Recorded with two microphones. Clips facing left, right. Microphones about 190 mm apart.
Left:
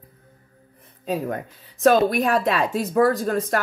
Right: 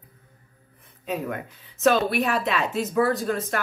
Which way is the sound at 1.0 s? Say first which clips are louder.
Left 3 dB; 35° left (ahead or behind).